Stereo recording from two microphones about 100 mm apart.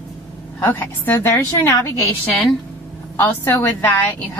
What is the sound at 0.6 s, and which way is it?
Speech, 20° left (ahead or behind).